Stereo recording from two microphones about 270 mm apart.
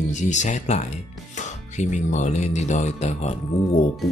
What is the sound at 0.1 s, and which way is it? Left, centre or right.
Speech, left.